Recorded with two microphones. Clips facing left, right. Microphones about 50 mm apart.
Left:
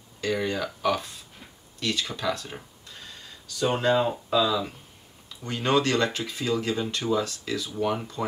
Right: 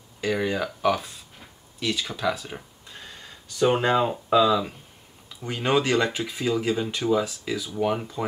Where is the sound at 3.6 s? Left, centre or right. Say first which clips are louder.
Right 2 dB; right.